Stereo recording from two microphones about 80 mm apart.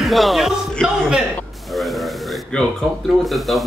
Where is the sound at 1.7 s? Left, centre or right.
Centre.